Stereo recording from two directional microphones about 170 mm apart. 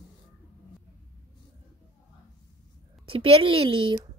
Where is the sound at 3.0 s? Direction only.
35° right (ahead or behind).